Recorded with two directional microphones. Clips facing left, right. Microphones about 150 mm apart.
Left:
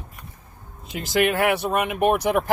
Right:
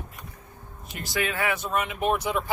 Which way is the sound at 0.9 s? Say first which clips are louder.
Left 8 dB; 80° left.